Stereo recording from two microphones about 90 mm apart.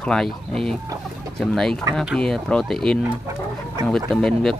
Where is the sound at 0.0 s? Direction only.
10° left (ahead or behind).